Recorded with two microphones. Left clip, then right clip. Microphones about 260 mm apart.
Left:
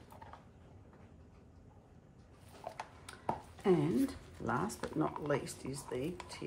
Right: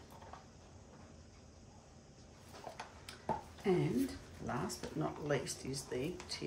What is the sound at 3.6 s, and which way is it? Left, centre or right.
Speech, centre.